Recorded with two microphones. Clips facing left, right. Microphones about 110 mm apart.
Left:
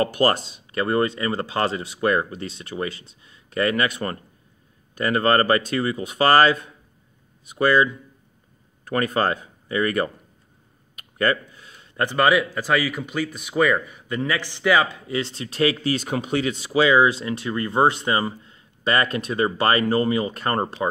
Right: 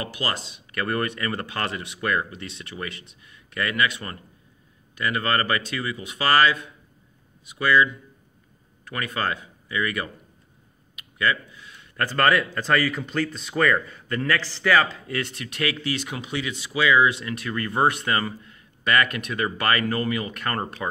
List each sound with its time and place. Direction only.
0.0 s speech: 45° left (ahead or behind)
0.7 s speech: 25° left (ahead or behind)
11.0 s a sound: 40° left (ahead or behind)
12.0 s speech: 15° left (ahead or behind)